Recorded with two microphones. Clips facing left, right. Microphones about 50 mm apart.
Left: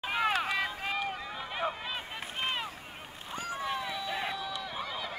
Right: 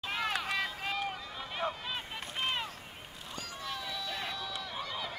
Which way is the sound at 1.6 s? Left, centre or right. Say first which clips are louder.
Left 1 dB; centre.